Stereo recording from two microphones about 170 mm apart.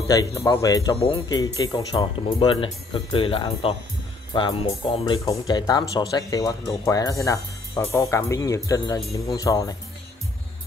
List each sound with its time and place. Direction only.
0.1 s speech: 20° left (ahead or behind)
0.9 s speech: 35° left (ahead or behind)
1.6 s speech: 20° left (ahead or behind)